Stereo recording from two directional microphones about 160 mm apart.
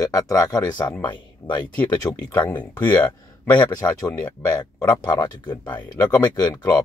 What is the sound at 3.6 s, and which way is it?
Speech, 25° left (ahead or behind).